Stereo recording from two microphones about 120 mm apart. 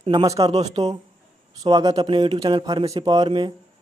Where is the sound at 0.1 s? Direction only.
30° right (ahead or behind).